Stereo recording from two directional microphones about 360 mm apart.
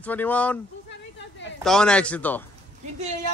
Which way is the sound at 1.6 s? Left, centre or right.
Centre.